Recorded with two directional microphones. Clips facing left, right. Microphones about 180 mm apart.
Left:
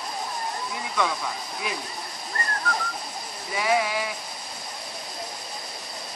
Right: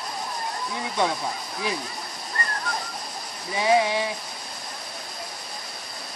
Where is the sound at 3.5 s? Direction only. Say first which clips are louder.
Right 3 dB; 25° right (ahead or behind).